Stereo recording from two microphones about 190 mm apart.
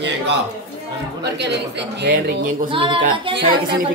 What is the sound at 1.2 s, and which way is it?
Speech, 60° right (ahead or behind).